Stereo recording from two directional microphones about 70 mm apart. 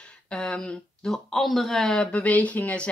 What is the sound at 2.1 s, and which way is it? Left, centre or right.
Speech, left.